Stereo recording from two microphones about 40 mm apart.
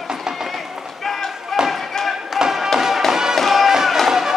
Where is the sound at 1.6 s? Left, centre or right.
Centre.